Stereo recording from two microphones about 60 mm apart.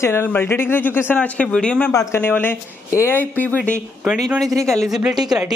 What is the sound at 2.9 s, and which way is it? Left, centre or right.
Speech, left.